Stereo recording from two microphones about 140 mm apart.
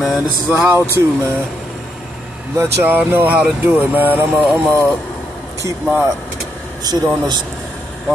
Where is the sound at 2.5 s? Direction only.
15° right (ahead or behind).